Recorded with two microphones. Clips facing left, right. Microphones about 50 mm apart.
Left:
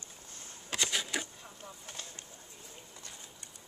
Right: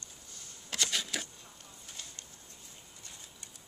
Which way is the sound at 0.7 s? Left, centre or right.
Centre.